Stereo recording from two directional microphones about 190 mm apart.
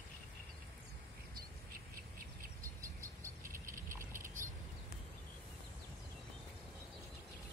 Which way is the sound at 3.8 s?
15° right (ahead or behind).